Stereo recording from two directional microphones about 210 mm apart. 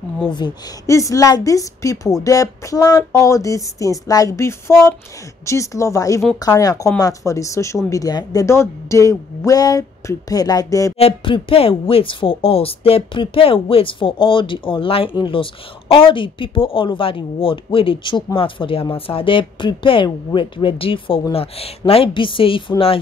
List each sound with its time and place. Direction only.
0.3 s a woman's voice: 20° left (ahead or behind)